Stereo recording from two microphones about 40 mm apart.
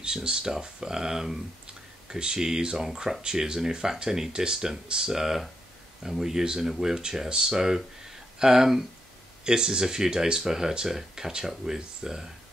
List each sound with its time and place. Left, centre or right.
0.0 s speech: right
9.4 s speech: centre